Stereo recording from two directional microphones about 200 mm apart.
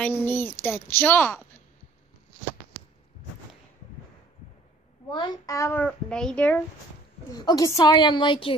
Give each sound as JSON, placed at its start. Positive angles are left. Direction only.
{"t": 0.0, "sound": "a child's voice", "side_deg": 10}
{"t": 5.1, "sound": "a child's voice", "side_deg": 20}
{"t": 7.3, "sound": "a woman's voice", "side_deg": 20}